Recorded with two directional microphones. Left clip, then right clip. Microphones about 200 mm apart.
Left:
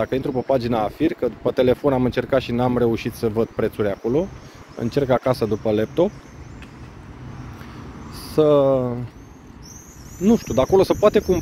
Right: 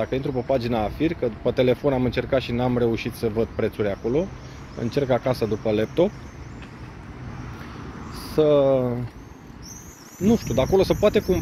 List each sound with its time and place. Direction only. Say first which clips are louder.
0.0 s speech: left 3 dB; 30° left (ahead or behind)
8.1 s vehicle: left 2 dB; 30° left (ahead or behind)
8.6 s speech: left 1 dB; 10° left (ahead or behind)
10.2 s speech: left 3 dB; 35° left (ahead or behind)